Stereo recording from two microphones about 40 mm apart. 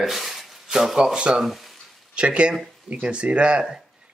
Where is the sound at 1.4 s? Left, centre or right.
Centre.